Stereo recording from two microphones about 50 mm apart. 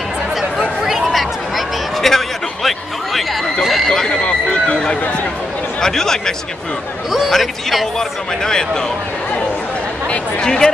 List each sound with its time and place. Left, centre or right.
0.8 s a sound: centre
2.0 s chatter: centre
3.6 s a sound: centre
3.9 s horse: centre
5.8 s a man's voice: centre
10.4 s speech: centre